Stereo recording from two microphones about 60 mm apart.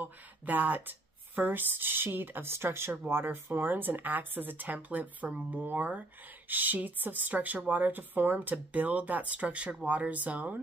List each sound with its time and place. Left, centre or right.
0.0 s speech: right